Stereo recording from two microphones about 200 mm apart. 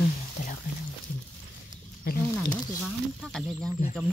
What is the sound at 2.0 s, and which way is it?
Speech, 45° left (ahead or behind).